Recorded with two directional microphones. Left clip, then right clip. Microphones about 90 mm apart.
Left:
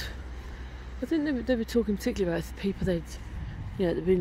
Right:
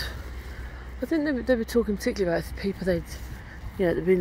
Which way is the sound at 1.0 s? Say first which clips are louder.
Right 3 dB; 25° left (ahead or behind).